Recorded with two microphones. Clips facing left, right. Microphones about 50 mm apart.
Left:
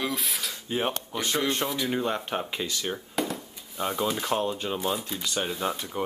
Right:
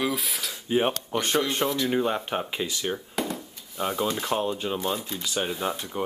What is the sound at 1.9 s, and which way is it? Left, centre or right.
Speech, centre.